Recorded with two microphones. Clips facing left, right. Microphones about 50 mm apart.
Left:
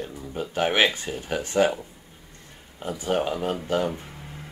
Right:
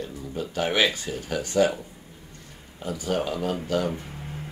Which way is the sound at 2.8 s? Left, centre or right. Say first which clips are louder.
Left 2 dB; left.